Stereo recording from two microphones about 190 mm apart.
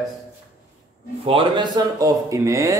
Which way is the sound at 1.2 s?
25° right (ahead or behind).